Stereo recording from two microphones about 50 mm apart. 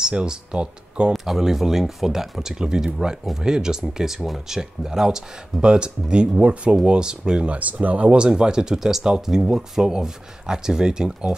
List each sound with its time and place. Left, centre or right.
0.0 s speech: centre
1.1 s speech: centre
7.5 s speech: right
8.2 s speech: centre